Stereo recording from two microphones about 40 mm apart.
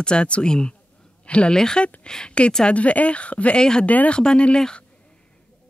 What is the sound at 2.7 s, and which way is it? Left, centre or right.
Speech, left.